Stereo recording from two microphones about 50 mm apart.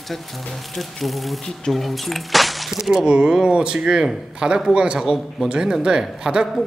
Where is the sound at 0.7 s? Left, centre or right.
Centre.